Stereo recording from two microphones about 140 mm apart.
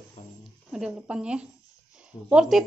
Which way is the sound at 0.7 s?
5° right (ahead or behind).